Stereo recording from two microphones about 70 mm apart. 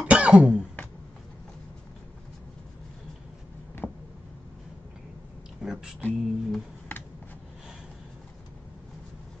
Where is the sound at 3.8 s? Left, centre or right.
Centre.